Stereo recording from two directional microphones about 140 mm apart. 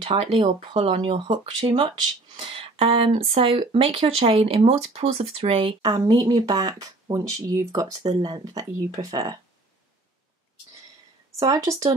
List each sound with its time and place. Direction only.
0.0 s speech: 40° right (ahead or behind); by 8.1 s 25° right (ahead or behind)
9.1 s speech: 25° right (ahead or behind)
11.3 s speech: 25° right (ahead or behind)